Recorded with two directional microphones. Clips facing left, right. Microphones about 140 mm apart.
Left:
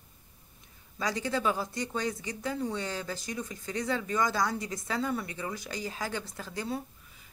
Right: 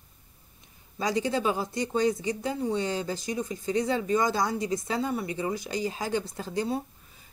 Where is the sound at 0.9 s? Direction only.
20° right (ahead or behind).